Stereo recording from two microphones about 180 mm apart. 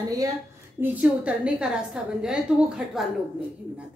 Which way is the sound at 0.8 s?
5° right (ahead or behind).